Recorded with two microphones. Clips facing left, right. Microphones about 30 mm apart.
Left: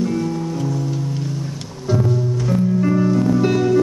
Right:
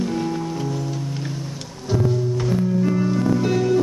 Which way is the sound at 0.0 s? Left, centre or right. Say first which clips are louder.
Left 2 dB; centre.